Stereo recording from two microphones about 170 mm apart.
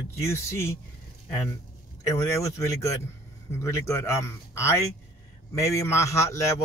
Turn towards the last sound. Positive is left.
turn(degrees=15)  # may be behind; listen again after turning